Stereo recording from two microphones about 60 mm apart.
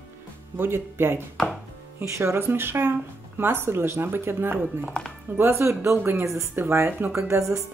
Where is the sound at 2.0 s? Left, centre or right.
Right.